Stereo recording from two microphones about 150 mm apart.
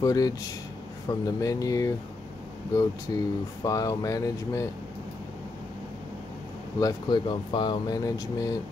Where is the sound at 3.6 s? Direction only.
20° left (ahead or behind).